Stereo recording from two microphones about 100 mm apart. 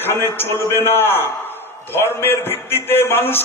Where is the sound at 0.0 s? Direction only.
25° left (ahead or behind).